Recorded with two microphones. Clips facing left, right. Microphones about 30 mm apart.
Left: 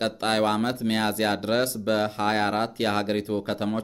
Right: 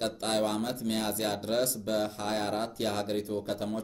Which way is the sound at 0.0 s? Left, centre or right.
Left.